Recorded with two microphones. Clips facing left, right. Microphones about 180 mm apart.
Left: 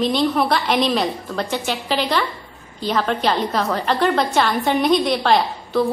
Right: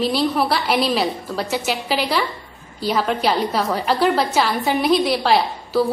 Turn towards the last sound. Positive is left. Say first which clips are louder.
# even
turn(degrees=-5)  # may be behind; listen again after turning